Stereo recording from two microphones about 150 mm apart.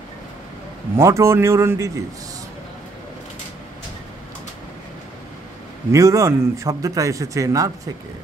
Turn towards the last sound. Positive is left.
turn(degrees=-20)  # may be behind; listen again after turning